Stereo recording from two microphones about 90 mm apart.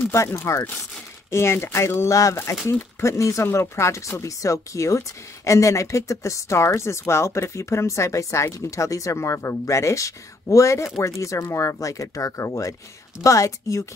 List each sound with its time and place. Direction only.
0.0 s speech: 30° left (ahead or behind)